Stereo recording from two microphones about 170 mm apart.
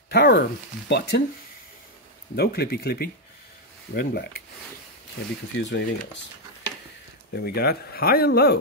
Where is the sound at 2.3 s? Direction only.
70° left (ahead or behind).